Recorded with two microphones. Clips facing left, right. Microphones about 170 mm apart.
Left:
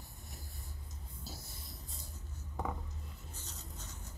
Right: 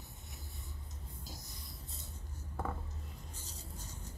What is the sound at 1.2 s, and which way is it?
Vehicle, 15° right (ahead or behind).